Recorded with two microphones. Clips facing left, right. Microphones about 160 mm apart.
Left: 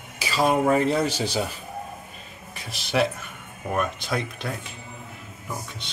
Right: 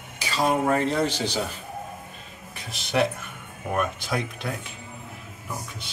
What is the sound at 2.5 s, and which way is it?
Speech, centre (ahead or behind).